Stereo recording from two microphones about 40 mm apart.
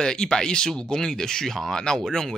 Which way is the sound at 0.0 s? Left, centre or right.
Centre.